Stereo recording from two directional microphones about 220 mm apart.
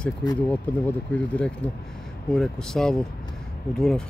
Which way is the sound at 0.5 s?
5° left (ahead or behind).